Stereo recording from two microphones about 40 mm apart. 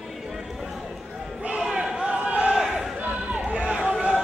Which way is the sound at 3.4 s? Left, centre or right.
Right.